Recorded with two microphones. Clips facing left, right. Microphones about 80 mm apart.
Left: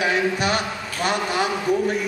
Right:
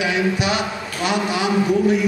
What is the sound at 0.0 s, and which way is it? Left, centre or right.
Speech, left.